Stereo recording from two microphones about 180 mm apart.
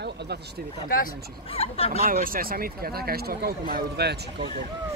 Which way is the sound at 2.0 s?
50° right (ahead or behind).